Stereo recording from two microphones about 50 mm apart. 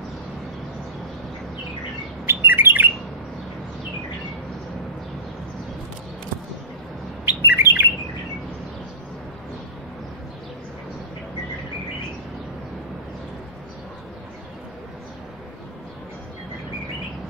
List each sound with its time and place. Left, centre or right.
2.2 s bird: right
7.2 s bird: right